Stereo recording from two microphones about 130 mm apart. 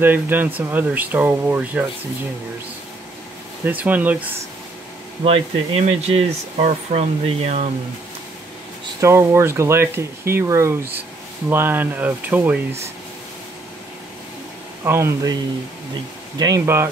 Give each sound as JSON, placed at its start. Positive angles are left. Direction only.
{"t": 0.0, "sound": "speech", "side_deg": -15}
{"t": 3.6, "sound": "speech", "side_deg": -15}
{"t": 5.2, "sound": "speech", "side_deg": -50}
{"t": 9.0, "sound": "speech", "side_deg": -20}
{"t": 14.9, "sound": "speech", "side_deg": -20}
{"t": 16.3, "sound": "speech", "side_deg": -30}
{"t": 16.6, "sound": "speech", "side_deg": -20}